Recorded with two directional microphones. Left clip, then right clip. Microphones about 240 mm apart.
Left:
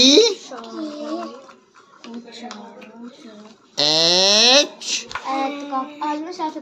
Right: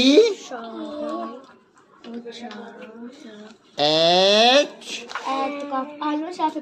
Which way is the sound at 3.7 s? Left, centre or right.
Centre.